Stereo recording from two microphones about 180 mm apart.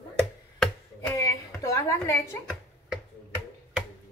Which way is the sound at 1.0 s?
15° left (ahead or behind).